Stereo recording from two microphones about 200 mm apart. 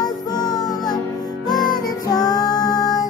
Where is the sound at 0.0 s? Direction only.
20° left (ahead or behind).